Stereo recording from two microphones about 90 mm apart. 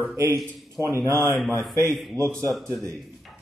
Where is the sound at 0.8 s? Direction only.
15° right (ahead or behind).